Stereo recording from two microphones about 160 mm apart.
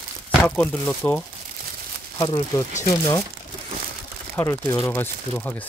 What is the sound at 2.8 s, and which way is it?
Speech, 25° left (ahead or behind).